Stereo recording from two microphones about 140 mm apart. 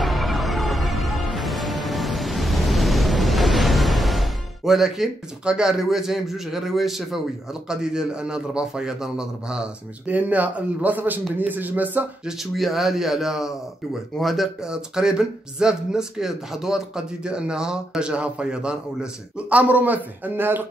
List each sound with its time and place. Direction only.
0.0 s music: centre (ahead or behind)
7.6 s speech: 5° right (ahead or behind)
12.4 s speech: centre (ahead or behind)